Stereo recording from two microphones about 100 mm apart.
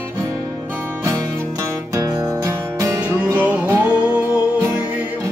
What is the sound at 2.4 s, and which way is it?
Music, 30° right (ahead or behind).